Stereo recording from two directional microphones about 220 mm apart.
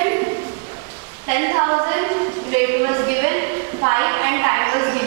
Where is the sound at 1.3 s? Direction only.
15° right (ahead or behind).